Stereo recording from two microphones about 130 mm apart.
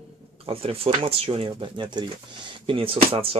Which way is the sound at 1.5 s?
35° right (ahead or behind).